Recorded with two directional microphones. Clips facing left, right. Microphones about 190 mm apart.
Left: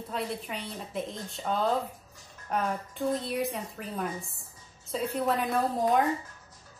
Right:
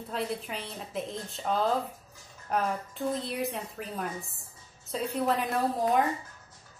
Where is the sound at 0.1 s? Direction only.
Centre (ahead or behind).